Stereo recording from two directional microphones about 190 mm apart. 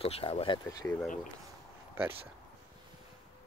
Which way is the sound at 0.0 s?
30° left (ahead or behind).